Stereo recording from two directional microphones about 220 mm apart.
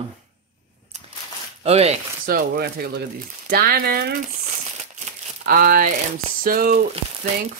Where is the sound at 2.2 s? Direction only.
40° right (ahead or behind).